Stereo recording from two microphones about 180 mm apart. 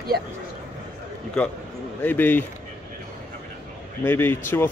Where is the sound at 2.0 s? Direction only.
10° left (ahead or behind).